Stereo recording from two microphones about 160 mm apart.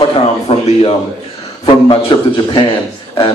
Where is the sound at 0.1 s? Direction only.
40° left (ahead or behind).